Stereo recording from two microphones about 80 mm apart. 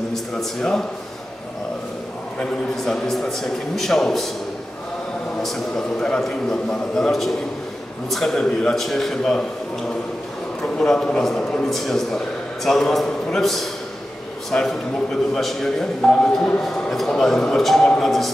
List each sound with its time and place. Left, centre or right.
0.1 s a man's voice: centre
2.3 s speech: centre
5.4 s speech: centre
10.6 s speech: centre